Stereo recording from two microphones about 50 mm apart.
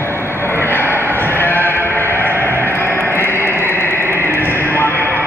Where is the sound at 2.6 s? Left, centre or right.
Left.